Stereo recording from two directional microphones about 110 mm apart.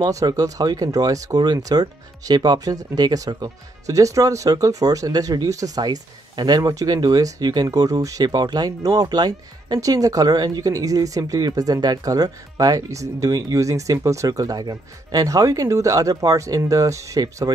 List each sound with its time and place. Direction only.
0.0 s speech: 30° right (ahead or behind)